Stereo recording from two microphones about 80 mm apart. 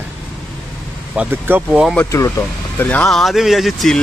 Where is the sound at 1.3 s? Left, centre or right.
Right.